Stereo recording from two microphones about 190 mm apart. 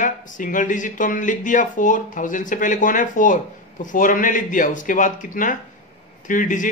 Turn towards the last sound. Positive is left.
turn(degrees=40)  # may be behind; listen again after turning